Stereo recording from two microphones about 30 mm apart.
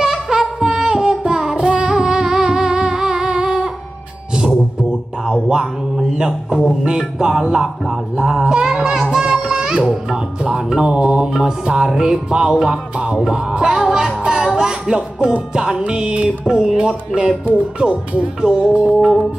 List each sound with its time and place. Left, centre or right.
0.0 s music: right
2.2 s humming: centre
5.3 s music: right
7.8 s music: centre
12.3 s speech: right
13.2 s music: right
15.8 s speech: right
16.3 s music: right
16.7 s speech: right